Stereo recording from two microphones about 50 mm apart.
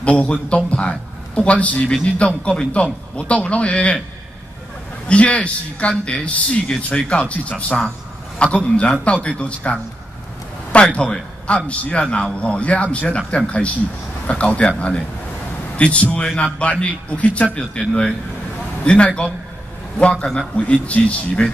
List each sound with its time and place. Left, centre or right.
0.0 s a man's voice: left
5.0 s a man's voice: left